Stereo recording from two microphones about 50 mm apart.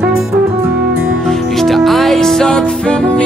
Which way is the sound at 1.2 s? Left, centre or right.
Centre.